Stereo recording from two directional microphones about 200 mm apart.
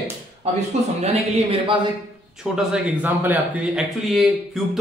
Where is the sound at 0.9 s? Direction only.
30° right (ahead or behind).